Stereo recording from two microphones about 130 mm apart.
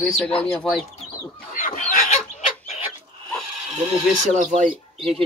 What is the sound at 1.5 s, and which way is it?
Chicken, 90° left.